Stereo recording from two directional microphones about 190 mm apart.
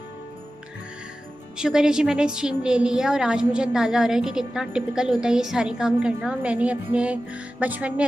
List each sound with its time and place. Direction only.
1.6 s a woman's voice: 5° right (ahead or behind)